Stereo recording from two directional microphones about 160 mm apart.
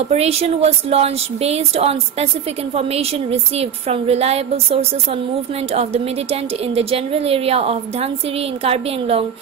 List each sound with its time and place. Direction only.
0.1 s speech: 40° right (ahead or behind)
6.3 s speech: 35° right (ahead or behind)